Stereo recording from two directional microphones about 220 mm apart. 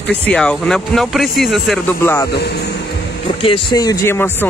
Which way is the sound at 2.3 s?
50° left (ahead or behind).